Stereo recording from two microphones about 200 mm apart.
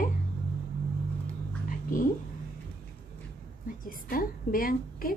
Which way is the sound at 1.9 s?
40° left (ahead or behind).